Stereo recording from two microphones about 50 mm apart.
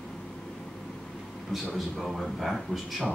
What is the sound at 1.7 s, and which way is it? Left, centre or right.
A man's voice, centre.